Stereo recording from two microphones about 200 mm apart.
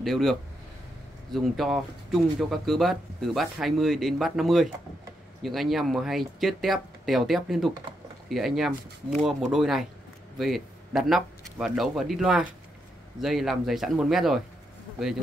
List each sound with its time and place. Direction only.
0.0 s speech: centre (ahead or behind)